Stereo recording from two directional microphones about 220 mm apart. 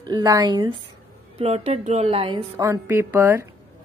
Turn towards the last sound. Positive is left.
turn(degrees=-10)  # may be behind; listen again after turning